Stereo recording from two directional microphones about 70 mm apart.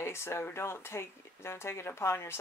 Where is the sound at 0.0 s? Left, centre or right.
Left.